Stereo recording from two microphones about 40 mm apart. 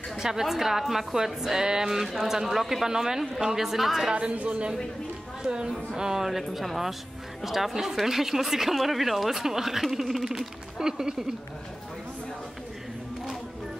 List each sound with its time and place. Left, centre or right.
0.2 s speech: centre
4.1 s a woman's voice: right